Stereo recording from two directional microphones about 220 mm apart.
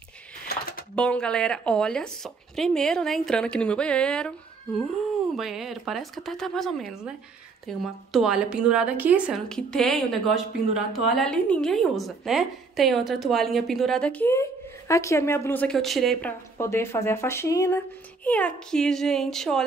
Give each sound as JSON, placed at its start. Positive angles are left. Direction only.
{"t": 0.5, "sound": "a sound", "side_deg": 45}
{"t": 0.9, "sound": "a woman's voice", "side_deg": 5}
{"t": 5.3, "sound": "a woman's voice", "side_deg": 0}